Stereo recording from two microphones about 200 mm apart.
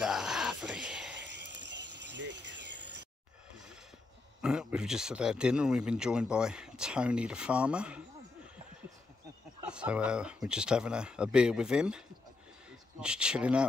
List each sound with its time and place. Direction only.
0.0 s a sound: centre (ahead or behind)
1.1 s cricket: 60° right (ahead or behind)
4.4 s speech: 5° right (ahead or behind)
9.7 s speech: 5° right (ahead or behind)
13.0 s speech: 5° right (ahead or behind)